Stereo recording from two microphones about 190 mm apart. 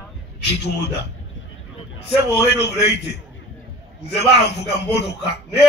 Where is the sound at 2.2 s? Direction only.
60° left (ahead or behind).